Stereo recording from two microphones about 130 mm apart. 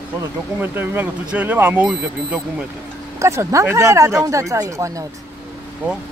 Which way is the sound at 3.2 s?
20° right (ahead or behind).